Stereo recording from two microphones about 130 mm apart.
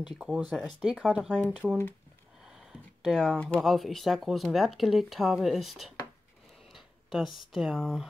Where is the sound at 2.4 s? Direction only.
5° right (ahead or behind).